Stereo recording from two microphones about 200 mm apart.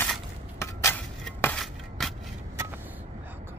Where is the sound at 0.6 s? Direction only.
15° left (ahead or behind).